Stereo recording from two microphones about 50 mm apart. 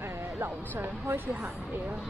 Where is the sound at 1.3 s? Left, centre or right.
Right.